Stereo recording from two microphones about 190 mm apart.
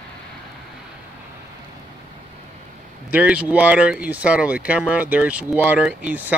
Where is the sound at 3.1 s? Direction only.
5° right (ahead or behind).